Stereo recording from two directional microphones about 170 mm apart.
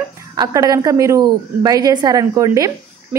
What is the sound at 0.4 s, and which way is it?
A woman's voice, 20° right (ahead or behind).